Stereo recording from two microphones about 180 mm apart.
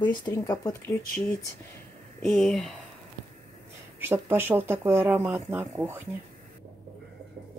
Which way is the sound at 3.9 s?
10° right (ahead or behind).